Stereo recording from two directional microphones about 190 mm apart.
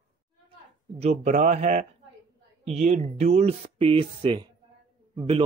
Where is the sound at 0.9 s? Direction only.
35° right (ahead or behind).